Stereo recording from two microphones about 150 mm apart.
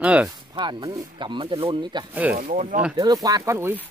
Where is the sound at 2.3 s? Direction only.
55° right (ahead or behind).